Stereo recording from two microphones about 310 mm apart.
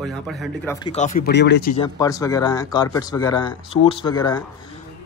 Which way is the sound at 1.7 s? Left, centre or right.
Centre.